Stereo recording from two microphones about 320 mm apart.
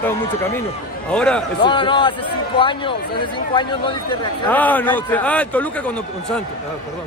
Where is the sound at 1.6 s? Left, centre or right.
Centre.